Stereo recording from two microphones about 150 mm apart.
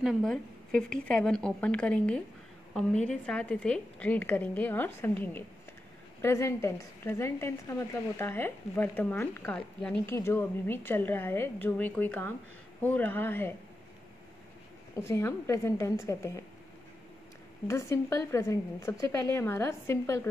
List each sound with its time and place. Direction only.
0.0 s a woman's voice: centre (ahead or behind)
15.0 s a woman's voice: 15° left (ahead or behind)
17.6 s a woman's voice: 20° left (ahead or behind)